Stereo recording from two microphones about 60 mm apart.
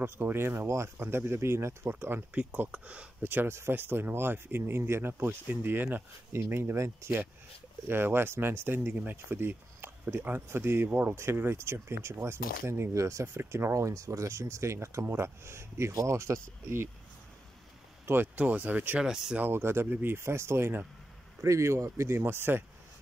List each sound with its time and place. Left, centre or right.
0.0 s speech: right
2.7 s speech: right
3.2 s speech: right
3.4 s speech: right
3.7 s speech: right
6.3 s speech: right
18.0 s speech: right
18.9 s speech: centre
19.5 s speech: right
21.4 s speech: right
22.2 s speech: right